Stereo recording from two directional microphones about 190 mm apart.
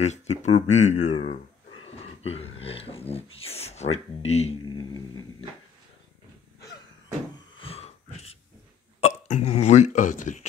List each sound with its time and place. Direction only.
0.0 s speech: 35° left (ahead or behind)
4.6 s music: 20° left (ahead or behind)
7.3 s a sound: 30° left (ahead or behind)
9.0 s speech: 35° left (ahead or behind)